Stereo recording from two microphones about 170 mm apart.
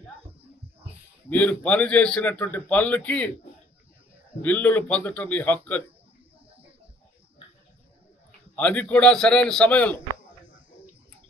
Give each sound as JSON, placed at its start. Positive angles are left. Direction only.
{"t": 1.3, "sound": "a man's voice", "side_deg": 10}
{"t": 4.4, "sound": "a man's voice", "side_deg": 10}
{"t": 8.5, "sound": "a man's voice", "side_deg": 10}